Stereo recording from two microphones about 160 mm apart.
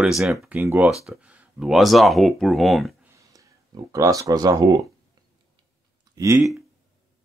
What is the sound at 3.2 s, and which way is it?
Speech, 20° right (ahead or behind).